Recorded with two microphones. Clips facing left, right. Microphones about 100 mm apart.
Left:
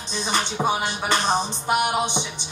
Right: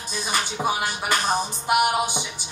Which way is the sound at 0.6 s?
15° left (ahead or behind).